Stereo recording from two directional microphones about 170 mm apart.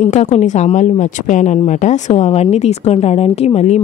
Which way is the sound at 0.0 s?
45° left (ahead or behind).